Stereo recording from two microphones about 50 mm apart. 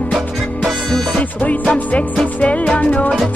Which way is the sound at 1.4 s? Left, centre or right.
Left.